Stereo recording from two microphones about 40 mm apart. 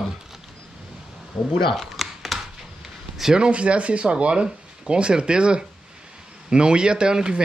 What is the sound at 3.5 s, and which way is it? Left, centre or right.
Speech, right.